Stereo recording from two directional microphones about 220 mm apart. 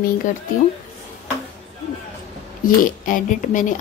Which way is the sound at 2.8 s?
40° left (ahead or behind).